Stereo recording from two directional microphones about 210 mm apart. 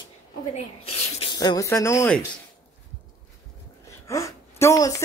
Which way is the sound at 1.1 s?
20° left (ahead or behind).